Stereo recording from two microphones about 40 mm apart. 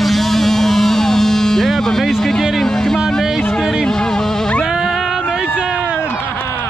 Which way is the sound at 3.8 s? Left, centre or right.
Centre.